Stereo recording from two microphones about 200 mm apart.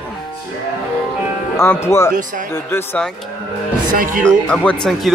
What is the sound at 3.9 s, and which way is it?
Speech, 45° right (ahead or behind).